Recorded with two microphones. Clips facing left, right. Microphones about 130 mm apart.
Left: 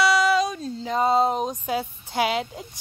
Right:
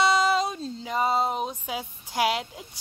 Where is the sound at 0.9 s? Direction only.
35° left (ahead or behind).